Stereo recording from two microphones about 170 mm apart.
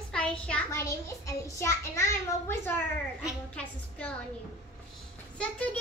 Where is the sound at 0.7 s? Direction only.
15° left (ahead or behind).